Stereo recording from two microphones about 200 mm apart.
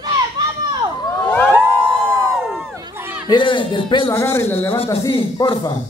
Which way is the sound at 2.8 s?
15° right (ahead or behind).